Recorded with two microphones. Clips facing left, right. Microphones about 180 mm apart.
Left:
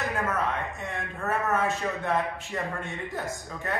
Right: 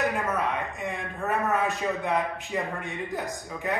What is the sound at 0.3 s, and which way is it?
A man's voice, 15° right (ahead or behind).